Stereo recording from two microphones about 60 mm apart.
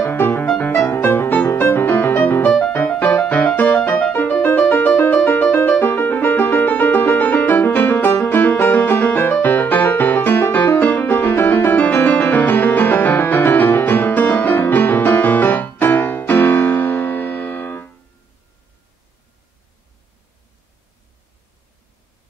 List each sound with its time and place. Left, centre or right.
0.0 s music: left